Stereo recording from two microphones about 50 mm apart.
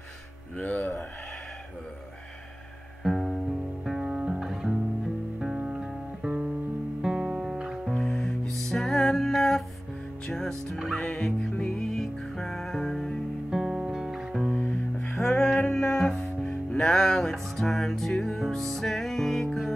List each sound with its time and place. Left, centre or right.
0.6 s speech: left
3.0 s music: centre
4.1 s music: centre
4.4 s music: centre
7.9 s music: centre
11.0 s music: left
11.8 s music: centre
13.5 s music: centre
14.6 s music: left
15.0 s music: centre